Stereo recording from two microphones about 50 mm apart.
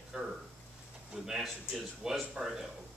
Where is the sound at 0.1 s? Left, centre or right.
Centre.